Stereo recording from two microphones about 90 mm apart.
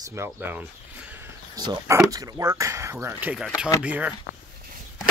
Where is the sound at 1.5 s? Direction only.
55° right (ahead or behind).